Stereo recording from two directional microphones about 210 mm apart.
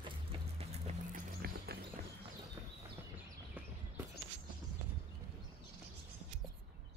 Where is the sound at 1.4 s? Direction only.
45° right (ahead or behind).